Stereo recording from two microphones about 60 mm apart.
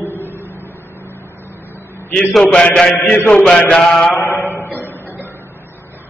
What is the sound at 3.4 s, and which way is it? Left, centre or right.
Mantra, centre.